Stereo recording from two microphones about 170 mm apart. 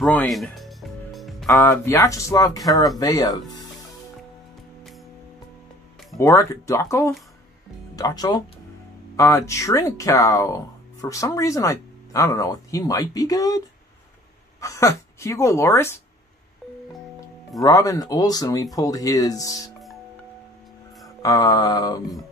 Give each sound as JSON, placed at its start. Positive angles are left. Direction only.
{"t": 0.0, "sound": "music", "side_deg": 5}
{"t": 1.5, "sound": "speech", "side_deg": 15}
{"t": 6.1, "sound": "speech", "side_deg": 20}
{"t": 14.6, "sound": "speech", "side_deg": 20}
{"t": 17.6, "sound": "speech", "side_deg": 20}
{"t": 21.2, "sound": "speech", "side_deg": 20}